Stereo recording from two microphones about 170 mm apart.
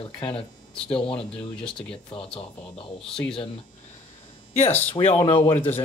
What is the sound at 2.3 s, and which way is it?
Speech, 35° left (ahead or behind).